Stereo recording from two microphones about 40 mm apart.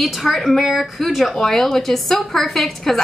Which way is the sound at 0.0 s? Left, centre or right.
Centre.